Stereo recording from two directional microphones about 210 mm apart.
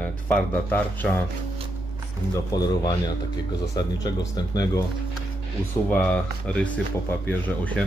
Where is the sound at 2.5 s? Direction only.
15° left (ahead or behind).